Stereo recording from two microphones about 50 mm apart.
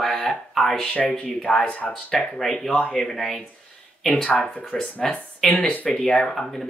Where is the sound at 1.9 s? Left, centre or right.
Centre.